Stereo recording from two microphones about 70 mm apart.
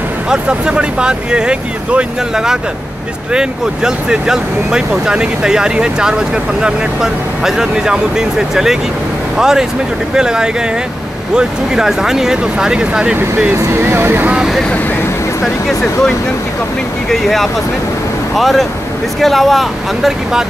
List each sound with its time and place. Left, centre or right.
0.3 s speech: centre
13.6 s speech: right
15.4 s speech: centre
17.1 s speech: centre